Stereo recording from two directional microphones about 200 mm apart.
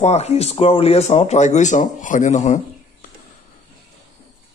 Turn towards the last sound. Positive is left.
turn(degrees=40)  # may be behind; listen again after turning